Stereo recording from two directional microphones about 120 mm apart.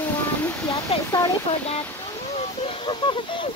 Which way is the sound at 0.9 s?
55° left (ahead or behind).